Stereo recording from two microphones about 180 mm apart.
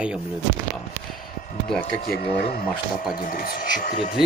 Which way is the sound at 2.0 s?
60° left (ahead or behind).